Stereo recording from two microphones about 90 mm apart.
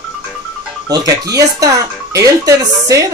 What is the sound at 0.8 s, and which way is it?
Speech, 45° right (ahead or behind).